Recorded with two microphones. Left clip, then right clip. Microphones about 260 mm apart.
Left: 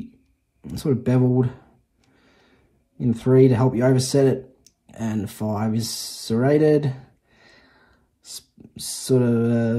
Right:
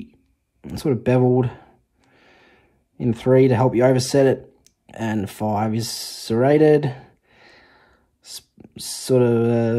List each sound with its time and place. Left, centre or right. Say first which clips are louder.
0.6 s speech: right 2 dB; right
3.0 s speech: right 1 dB; right